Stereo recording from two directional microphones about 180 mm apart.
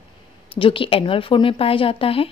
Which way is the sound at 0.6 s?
30° left (ahead or behind).